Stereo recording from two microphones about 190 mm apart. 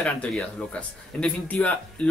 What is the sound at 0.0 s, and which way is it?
Speech, 5° left (ahead or behind).